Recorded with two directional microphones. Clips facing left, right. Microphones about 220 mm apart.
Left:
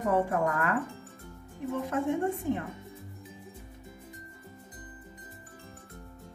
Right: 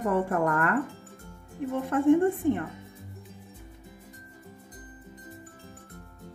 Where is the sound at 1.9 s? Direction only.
55° right (ahead or behind).